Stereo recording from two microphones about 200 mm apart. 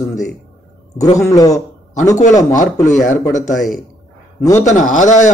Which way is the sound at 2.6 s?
35° left (ahead or behind).